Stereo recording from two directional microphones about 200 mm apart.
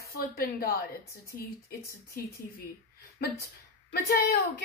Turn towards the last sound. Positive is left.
turn(degrees=50)  # may be behind; listen again after turning